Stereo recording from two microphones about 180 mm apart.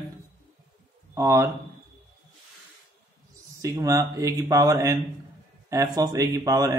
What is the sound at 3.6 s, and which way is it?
Speech, 20° right (ahead or behind).